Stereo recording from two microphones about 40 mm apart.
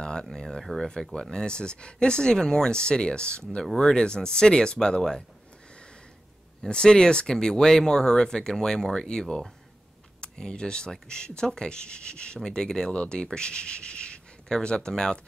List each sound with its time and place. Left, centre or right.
0.0 s speech: centre
6.6 s speech: centre
12.9 s speech: left